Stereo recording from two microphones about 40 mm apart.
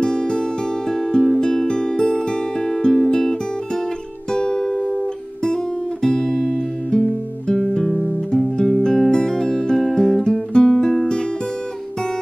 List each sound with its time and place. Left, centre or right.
0.0 s music: centre
6.0 s music: centre